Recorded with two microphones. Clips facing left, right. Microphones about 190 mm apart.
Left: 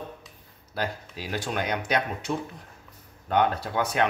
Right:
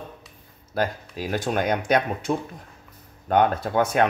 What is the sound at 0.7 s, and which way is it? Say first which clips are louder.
Speech: right 6 dB; 50° right (ahead or behind).